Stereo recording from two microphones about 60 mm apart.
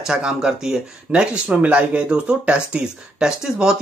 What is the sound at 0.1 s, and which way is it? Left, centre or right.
Speech, centre.